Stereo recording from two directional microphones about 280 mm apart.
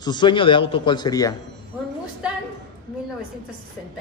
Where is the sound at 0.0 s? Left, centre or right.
Centre.